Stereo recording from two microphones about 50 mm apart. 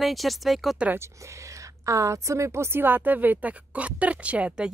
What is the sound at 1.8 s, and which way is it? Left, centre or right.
A woman's voice, right.